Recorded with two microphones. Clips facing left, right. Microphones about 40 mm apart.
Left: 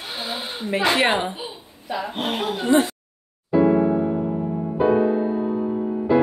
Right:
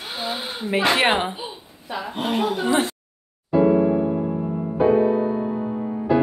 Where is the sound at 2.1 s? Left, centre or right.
Left.